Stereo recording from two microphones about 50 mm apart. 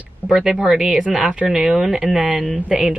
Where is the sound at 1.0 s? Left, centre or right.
Right.